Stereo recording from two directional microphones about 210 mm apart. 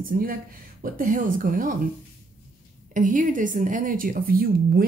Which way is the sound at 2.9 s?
40° right (ahead or behind).